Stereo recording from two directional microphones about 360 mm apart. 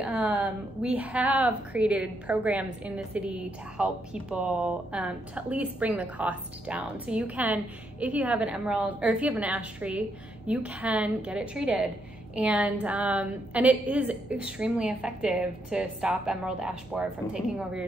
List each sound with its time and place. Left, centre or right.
0.0 s a woman's voice: centre